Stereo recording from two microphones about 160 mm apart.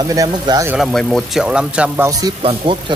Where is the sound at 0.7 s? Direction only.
Centre (ahead or behind).